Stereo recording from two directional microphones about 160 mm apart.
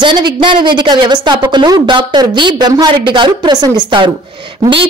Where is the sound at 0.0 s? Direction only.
30° right (ahead or behind).